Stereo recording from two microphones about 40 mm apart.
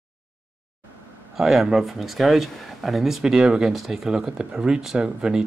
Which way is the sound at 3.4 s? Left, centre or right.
Centre.